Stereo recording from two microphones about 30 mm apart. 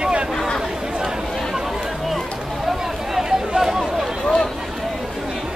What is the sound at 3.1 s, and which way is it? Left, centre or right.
Chatter, centre.